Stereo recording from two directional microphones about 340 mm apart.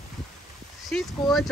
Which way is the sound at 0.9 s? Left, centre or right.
Centre.